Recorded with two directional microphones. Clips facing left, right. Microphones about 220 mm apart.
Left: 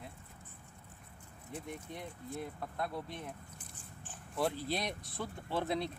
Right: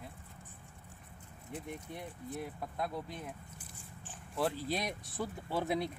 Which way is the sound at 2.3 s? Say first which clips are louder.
Even; 10° right (ahead or behind).